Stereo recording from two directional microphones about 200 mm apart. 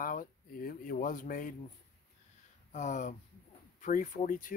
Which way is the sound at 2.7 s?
40° left (ahead or behind).